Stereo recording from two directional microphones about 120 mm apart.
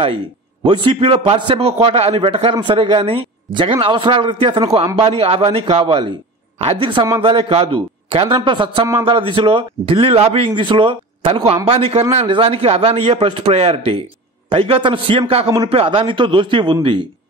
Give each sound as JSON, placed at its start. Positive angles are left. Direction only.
{"t": 0.7, "sound": "a man's voice", "side_deg": -45}